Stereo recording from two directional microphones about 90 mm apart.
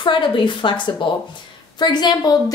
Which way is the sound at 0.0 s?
60° left (ahead or behind).